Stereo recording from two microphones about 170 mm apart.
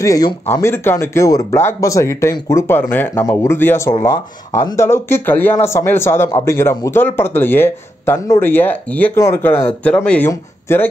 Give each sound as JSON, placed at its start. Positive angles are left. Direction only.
{"t": 0.0, "sound": "speech", "side_deg": 20}